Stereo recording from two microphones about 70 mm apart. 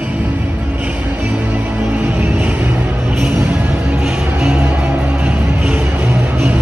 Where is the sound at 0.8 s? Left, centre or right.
Right.